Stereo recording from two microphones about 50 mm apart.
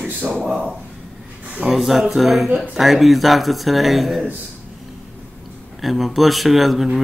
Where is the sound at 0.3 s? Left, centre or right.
Centre.